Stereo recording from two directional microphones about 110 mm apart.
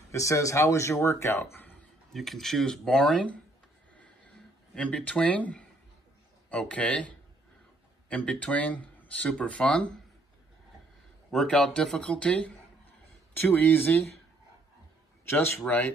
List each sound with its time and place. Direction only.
0.1 s speech: 30° left (ahead or behind)
2.1 s speech: centre (ahead or behind)
4.7 s speech: 10° left (ahead or behind)
11.2 s speech: 5° left (ahead or behind)
15.2 s a man's voice: 20° left (ahead or behind)